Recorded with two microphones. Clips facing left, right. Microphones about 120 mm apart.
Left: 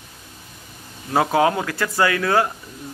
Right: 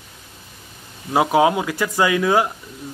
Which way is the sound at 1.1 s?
15° right (ahead or behind).